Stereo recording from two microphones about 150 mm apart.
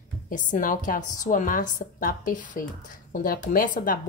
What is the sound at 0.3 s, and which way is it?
A woman's voice, 60° left (ahead or behind).